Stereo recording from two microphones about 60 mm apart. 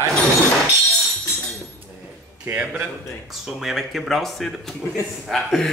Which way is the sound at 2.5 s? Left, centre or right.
Right.